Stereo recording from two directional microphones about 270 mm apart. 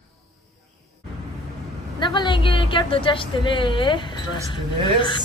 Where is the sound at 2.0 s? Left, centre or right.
Centre.